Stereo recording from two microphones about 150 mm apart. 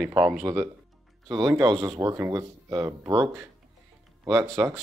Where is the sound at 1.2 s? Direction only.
25° right (ahead or behind).